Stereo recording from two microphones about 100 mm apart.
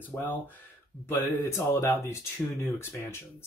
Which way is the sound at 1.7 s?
25° left (ahead or behind).